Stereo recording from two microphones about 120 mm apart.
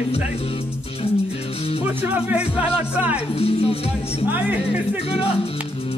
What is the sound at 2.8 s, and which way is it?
Speech, 10° right (ahead or behind).